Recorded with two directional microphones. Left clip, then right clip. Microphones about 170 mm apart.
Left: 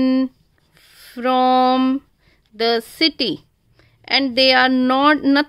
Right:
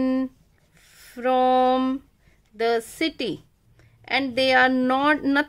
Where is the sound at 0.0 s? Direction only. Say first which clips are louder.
Left 6 dB; 25° left (ahead or behind).